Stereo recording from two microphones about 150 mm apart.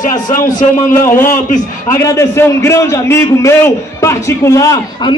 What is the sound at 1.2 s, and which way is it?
Speech, 60° left (ahead or behind).